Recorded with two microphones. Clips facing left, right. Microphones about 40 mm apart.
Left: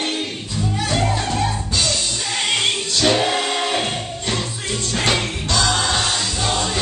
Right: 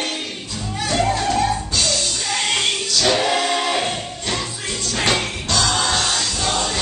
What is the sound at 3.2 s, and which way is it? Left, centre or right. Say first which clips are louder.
Music: right 1 dB; centre.